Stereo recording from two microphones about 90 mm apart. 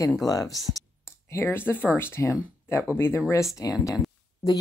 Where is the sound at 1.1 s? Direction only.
30° left (ahead or behind).